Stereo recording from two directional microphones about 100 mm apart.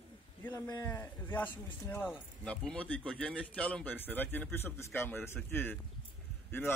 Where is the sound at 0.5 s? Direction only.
40° left (ahead or behind).